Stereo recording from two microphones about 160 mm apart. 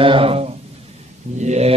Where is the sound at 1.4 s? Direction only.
45° right (ahead or behind).